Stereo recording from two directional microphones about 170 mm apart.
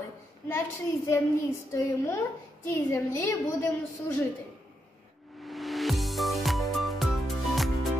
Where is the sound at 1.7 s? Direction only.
15° left (ahead or behind).